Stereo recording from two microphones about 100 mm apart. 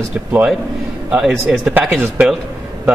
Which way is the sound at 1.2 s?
5° right (ahead or behind).